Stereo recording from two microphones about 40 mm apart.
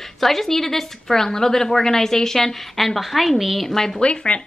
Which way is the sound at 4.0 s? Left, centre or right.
Left.